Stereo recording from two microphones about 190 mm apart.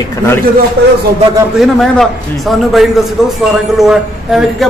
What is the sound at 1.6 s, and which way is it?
A man's voice, centre (ahead or behind).